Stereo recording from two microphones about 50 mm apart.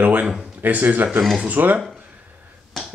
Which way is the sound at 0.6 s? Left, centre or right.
Right.